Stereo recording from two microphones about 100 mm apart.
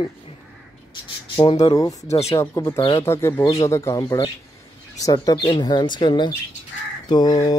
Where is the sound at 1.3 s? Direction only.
65° left (ahead or behind).